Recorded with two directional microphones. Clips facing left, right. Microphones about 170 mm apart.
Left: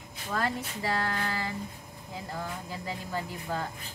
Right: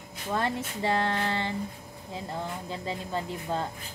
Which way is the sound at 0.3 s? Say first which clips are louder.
Right 2 dB; 25° right (ahead or behind).